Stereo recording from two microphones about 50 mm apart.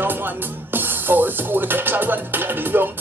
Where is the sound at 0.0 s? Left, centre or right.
Right.